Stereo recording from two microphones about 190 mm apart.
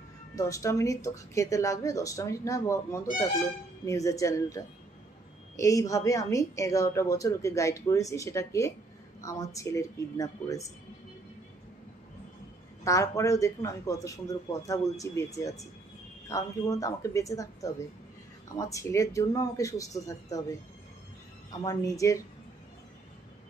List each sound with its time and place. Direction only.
0.4 s a woman's voice: 15° left (ahead or behind)
5.6 s a woman's voice: 15° left (ahead or behind)
12.8 s a woman's voice: 15° left (ahead or behind)
21.5 s a woman's voice: 15° left (ahead or behind)